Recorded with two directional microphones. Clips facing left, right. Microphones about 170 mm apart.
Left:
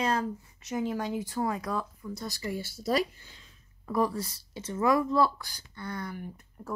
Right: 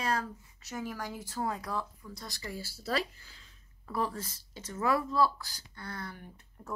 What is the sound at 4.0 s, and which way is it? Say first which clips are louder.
Speech: left 6 dB; 40° left (ahead or behind).